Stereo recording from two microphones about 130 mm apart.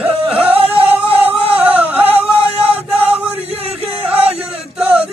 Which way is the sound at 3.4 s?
50° right (ahead or behind).